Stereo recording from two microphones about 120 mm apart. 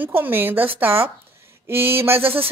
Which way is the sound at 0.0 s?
15° right (ahead or behind).